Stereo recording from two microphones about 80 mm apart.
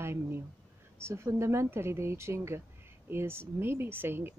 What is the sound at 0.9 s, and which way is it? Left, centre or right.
A woman's voice, right.